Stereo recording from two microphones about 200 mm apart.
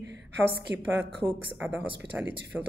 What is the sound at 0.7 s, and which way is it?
Speech, 60° right (ahead or behind).